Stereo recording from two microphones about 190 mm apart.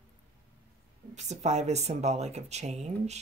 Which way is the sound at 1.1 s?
35° right (ahead or behind).